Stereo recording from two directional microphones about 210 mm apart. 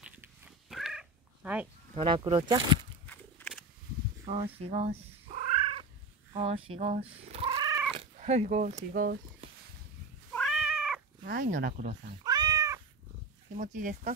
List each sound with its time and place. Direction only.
0.0 s cat: centre (ahead or behind)
2.0 s speech: 25° right (ahead or behind)
3.1 s a sound: 5° left (ahead or behind)
4.3 s cat: 30° right (ahead or behind)
6.3 s speech: 25° right (ahead or behind); by 9.5 s 40° right (ahead or behind)
10.3 s cat: centre (ahead or behind)
11.2 s speech: 40° right (ahead or behind)
12.2 s cat: 20° right (ahead or behind)
13.6 s speech: 40° right (ahead or behind)